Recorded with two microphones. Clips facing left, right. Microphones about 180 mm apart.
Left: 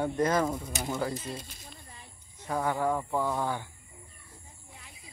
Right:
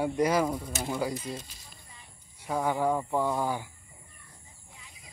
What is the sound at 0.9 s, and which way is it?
Speech, 10° right (ahead or behind).